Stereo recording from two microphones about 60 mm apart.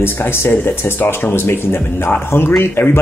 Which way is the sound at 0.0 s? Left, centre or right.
Left.